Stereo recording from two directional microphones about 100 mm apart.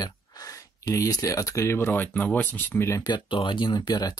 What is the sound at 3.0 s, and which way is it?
Speech, 50° left (ahead or behind).